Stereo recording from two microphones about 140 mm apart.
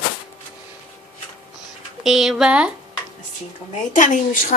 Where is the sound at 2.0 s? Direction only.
Centre (ahead or behind).